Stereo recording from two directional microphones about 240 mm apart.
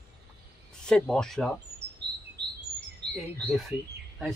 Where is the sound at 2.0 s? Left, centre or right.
Right.